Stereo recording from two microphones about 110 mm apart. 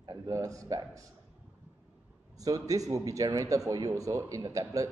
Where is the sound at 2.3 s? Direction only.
35° right (ahead or behind).